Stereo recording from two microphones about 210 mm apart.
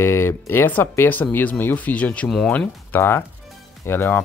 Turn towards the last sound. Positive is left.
turn(degrees=10)  # may be behind; listen again after turning